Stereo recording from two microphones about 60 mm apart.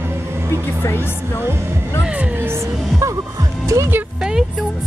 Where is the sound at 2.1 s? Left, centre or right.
Right.